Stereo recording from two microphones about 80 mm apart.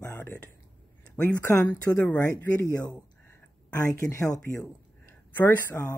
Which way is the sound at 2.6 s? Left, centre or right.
Left.